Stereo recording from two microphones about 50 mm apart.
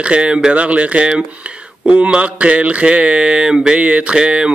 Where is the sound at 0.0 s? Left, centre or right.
Right.